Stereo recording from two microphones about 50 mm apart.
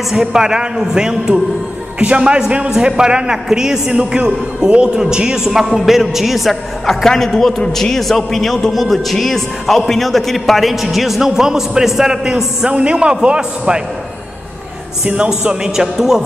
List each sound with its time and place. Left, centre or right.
0.1 s a man's voice: centre
15.6 s a man's voice: centre